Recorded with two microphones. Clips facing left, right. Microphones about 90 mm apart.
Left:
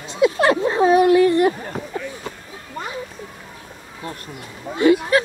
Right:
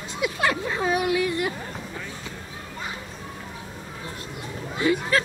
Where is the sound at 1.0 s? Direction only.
45° left (ahead or behind).